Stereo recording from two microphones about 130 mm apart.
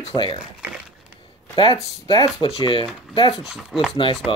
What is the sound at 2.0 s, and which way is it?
Speech, 35° left (ahead or behind).